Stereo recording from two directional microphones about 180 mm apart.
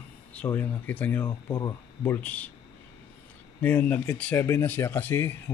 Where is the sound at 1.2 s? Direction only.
20° left (ahead or behind).